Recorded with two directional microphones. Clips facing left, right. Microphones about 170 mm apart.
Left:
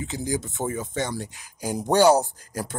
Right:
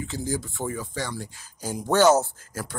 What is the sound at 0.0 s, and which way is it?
Speech, 20° left (ahead or behind).